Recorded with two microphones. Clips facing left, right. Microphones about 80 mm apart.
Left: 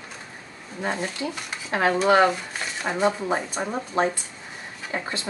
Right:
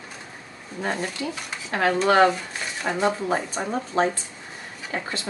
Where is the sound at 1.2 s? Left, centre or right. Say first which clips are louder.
Even; left.